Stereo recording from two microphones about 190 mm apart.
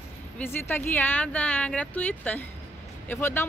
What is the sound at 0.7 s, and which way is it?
Speech, 10° left (ahead or behind).